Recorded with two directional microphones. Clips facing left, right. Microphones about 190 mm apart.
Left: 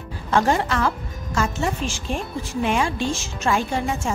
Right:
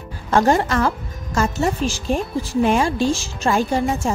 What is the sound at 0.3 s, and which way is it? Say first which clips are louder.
Speech: right 3 dB; 45° right (ahead or behind).